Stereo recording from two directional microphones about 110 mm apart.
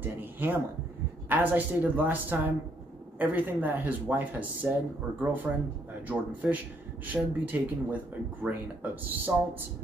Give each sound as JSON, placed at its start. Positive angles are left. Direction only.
{"t": 0.0, "sound": "speech", "side_deg": -15}